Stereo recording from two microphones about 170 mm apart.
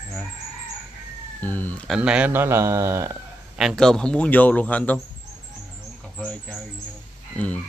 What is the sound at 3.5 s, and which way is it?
Speech, centre (ahead or behind).